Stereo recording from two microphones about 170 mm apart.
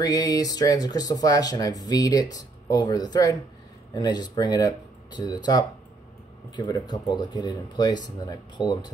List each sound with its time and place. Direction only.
0.0 s speech: 20° left (ahead or behind)